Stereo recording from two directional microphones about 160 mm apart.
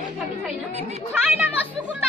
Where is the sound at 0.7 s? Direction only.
45° right (ahead or behind).